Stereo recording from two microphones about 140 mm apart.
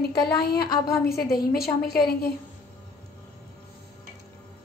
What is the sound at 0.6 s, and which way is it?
A woman's voice, 90° left.